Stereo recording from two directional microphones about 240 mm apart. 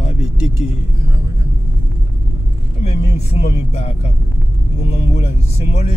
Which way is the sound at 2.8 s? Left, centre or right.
Left.